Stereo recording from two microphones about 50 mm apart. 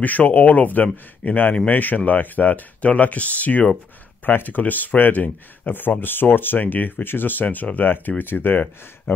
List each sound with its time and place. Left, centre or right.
0.0 s speech: left